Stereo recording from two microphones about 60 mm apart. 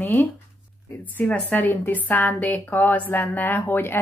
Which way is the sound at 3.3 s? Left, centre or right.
Left.